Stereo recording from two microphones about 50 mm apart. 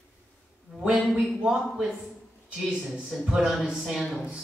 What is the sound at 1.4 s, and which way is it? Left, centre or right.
Speech, centre.